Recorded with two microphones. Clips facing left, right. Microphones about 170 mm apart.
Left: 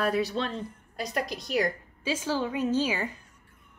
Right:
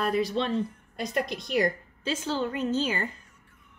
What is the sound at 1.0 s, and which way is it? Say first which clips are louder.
Speech: right 2 dB; 55° right (ahead or behind).